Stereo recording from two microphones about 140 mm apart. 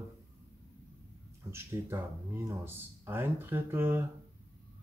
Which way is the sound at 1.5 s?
15° right (ahead or behind).